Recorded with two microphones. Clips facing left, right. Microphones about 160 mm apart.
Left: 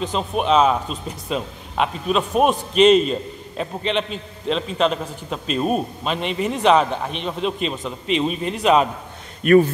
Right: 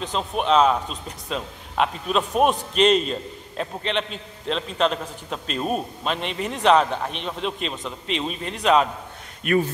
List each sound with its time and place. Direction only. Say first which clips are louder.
0.0 s a man's voice: left 3 dB; 5° left (ahead or behind)
9.4 s speech: left 8 dB; 50° left (ahead or behind)